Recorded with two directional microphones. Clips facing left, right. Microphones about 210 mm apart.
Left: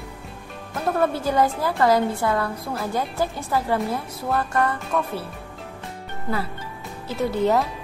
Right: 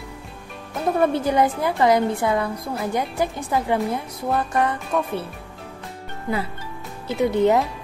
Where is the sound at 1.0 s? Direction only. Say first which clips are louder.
Right 2 dB; 20° right (ahead or behind).